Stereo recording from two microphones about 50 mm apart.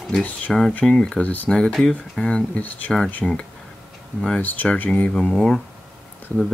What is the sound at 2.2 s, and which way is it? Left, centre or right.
Speech, left.